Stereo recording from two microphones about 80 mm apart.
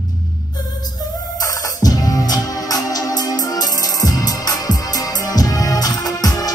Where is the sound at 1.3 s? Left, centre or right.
Left.